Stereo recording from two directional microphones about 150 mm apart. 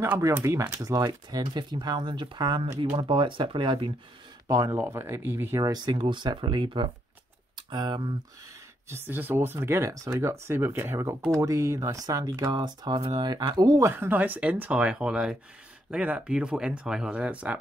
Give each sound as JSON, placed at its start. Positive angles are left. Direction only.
{"t": 0.0, "sound": "speech", "side_deg": -15}
{"t": 4.5, "sound": "speech", "side_deg": -20}
{"t": 8.8, "sound": "speech", "side_deg": -15}